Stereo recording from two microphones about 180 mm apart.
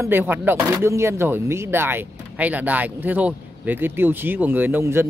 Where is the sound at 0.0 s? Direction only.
10° right (ahead or behind).